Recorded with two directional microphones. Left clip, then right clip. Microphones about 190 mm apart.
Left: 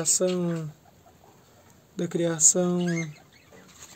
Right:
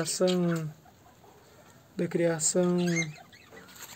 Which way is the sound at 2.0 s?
15° left (ahead or behind).